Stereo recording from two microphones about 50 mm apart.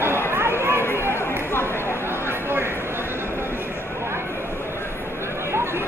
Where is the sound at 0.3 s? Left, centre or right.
Right.